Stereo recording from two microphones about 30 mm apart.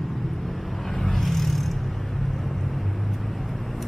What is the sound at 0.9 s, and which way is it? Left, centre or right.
Vehicle, centre.